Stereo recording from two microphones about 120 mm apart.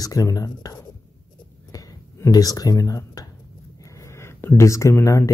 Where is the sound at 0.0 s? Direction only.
30° left (ahead or behind).